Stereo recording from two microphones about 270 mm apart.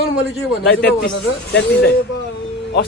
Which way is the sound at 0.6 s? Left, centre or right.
Left.